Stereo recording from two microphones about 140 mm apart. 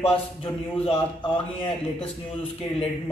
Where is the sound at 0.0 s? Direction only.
40° left (ahead or behind).